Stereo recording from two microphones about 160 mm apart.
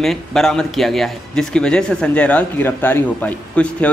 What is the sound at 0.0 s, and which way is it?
A man's voice, centre (ahead or behind).